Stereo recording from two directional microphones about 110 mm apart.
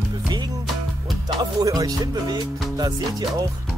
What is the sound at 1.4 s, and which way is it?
Music, 35° right (ahead or behind).